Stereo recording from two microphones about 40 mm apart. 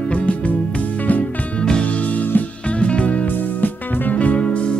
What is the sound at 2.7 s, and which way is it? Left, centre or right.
Music, left.